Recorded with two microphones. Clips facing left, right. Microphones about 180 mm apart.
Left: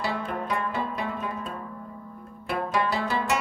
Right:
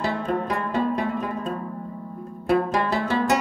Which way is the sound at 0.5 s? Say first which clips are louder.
Right 5 dB; 40° right (ahead or behind).